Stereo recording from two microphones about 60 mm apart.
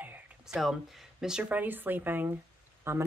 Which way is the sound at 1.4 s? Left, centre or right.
Right.